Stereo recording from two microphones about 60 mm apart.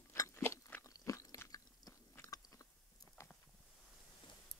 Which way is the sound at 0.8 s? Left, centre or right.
Left.